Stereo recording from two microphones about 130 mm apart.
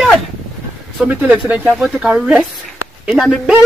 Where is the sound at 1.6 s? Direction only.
Centre (ahead or behind).